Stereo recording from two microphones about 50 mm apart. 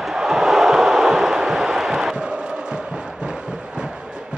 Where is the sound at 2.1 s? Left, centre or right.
Centre.